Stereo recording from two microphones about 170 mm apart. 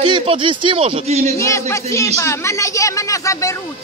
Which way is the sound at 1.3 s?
15° left (ahead or behind).